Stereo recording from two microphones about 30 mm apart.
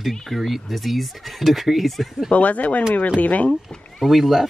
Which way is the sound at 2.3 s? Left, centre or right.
Left.